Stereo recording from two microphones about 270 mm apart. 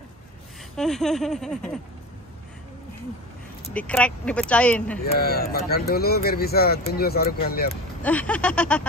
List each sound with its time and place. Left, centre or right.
0.7 s speech: centre
3.7 s speech: centre
5.0 s speech: left
8.0 s speech: centre